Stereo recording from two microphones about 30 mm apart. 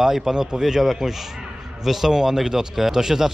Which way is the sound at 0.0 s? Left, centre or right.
Centre.